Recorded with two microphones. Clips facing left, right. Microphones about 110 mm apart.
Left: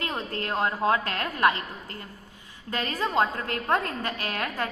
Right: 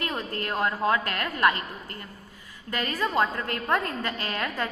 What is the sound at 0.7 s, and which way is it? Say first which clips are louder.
Speech: even; 15° left (ahead or behind).